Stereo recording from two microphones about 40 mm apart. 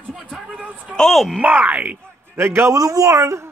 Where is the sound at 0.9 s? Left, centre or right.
Centre.